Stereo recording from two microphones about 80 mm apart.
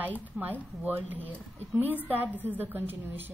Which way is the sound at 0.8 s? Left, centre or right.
Right.